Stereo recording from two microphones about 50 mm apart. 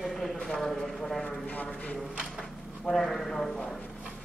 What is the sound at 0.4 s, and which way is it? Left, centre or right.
Speech, centre.